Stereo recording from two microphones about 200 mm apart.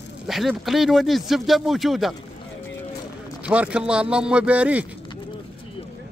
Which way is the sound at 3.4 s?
5° right (ahead or behind).